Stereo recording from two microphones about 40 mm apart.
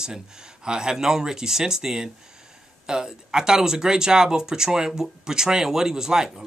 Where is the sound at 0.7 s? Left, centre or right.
Centre.